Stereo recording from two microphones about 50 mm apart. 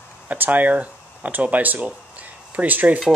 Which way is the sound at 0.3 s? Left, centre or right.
Right.